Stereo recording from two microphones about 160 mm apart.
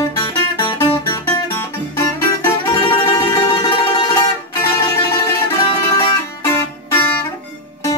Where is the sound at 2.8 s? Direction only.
25° left (ahead or behind).